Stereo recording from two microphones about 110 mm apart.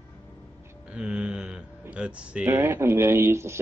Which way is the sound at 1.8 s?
10° right (ahead or behind).